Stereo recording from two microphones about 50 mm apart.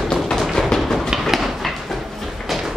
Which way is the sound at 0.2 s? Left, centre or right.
Centre.